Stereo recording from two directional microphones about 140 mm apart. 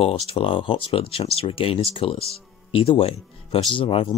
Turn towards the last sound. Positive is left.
turn(degrees=40)  # may be behind; listen again after turning